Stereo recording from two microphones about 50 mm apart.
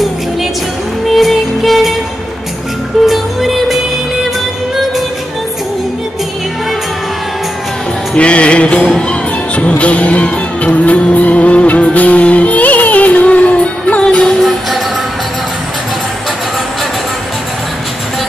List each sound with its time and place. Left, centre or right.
1.0 s music: centre
3.1 s music: centre
8.2 s music: left